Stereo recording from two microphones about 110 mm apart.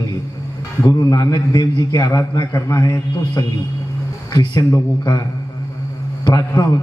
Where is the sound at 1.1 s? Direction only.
35° left (ahead or behind).